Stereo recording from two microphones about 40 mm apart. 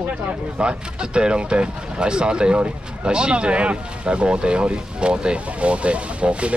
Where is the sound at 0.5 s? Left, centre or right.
Right.